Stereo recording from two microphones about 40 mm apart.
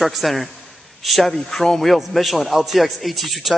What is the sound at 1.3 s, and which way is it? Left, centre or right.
A man's voice, centre.